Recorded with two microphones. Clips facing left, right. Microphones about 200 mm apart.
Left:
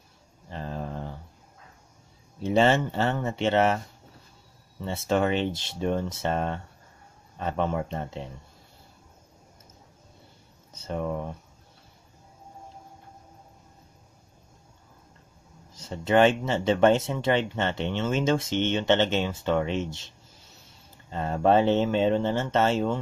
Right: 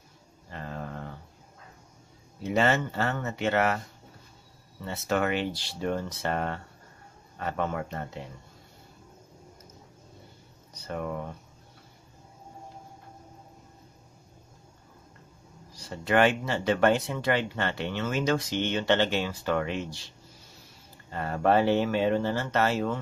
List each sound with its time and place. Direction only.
0.5 s a sound: 30° left (ahead or behind)
2.4 s speech: 30° left (ahead or behind)
4.8 s speech: 25° left (ahead or behind)
10.7 s speech: 25° left (ahead or behind)
15.7 s speech: 25° left (ahead or behind)
21.1 s speech: 20° left (ahead or behind)